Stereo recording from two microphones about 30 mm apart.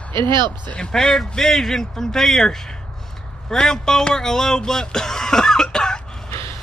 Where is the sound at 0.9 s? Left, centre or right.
Left.